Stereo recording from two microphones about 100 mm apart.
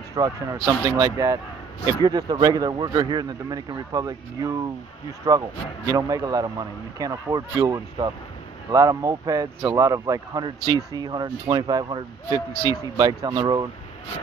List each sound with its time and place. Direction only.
0.1 s speech: 35° right (ahead or behind)